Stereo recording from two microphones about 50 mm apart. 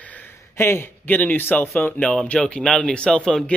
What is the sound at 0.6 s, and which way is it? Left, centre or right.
Speech, left.